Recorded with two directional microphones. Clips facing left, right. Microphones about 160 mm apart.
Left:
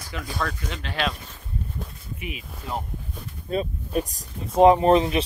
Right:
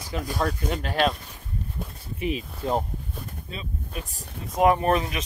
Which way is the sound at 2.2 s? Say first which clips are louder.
Right 9 dB; 35° right (ahead or behind).